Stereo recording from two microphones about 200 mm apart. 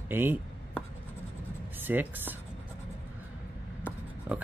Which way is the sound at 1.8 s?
10° right (ahead or behind).